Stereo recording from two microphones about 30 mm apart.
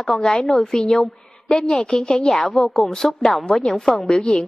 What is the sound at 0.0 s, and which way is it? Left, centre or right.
A woman's voice, centre.